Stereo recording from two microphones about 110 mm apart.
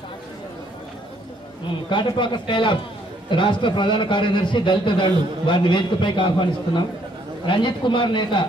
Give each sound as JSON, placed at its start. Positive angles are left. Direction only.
{"t": 1.9, "sound": "a man's voice", "side_deg": 45}